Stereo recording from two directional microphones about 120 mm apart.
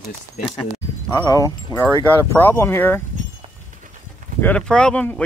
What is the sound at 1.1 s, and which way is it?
Speech, 30° left (ahead or behind).